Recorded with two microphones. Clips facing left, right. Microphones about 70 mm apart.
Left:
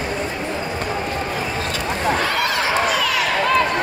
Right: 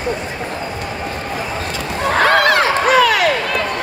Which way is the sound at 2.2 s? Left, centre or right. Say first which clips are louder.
Right 8 dB; right.